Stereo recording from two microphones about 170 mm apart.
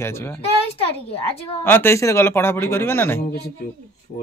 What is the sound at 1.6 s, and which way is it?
Speech, 15° left (ahead or behind).